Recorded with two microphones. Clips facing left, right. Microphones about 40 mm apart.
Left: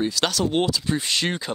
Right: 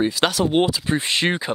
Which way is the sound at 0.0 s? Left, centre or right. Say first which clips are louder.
Right 3 dB; right.